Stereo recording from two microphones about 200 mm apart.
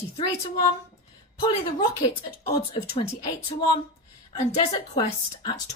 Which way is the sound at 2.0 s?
30° left (ahead or behind).